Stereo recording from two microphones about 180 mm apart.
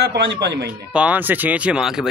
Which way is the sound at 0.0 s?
80° right.